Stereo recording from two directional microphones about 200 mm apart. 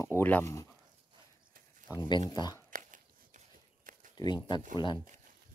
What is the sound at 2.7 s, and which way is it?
Walk, 40° right (ahead or behind).